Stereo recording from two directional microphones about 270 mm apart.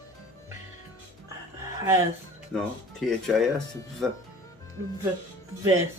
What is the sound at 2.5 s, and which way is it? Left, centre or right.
Speech, centre.